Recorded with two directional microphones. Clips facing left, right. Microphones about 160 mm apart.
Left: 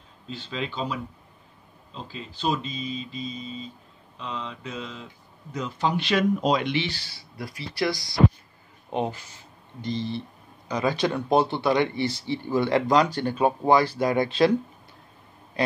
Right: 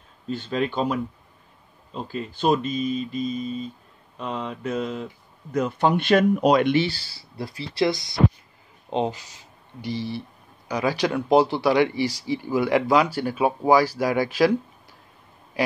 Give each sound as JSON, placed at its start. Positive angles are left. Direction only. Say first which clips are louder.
{"t": 0.3, "sound": "speech", "louder": "right 7 dB", "side_deg": -50}
{"t": 6.8, "sound": "speech", "louder": "right 6 dB", "side_deg": -35}
{"t": 9.9, "sound": "speech", "louder": "even", "side_deg": 20}
{"t": 10.7, "sound": "speech", "louder": "right 1 dB", "side_deg": -10}